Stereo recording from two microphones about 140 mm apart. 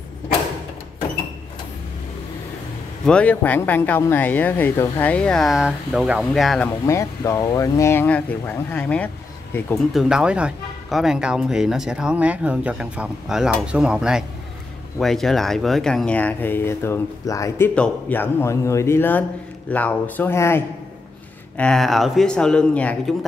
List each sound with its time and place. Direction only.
3.1 s speech: 10° left (ahead or behind)
6.9 s speech: 20° left (ahead or behind)
9.9 s speech: 5° right (ahead or behind); by 17.6 s 20° left (ahead or behind)
17.7 s speech: 10° left (ahead or behind)
21.5 s speech: 5° left (ahead or behind)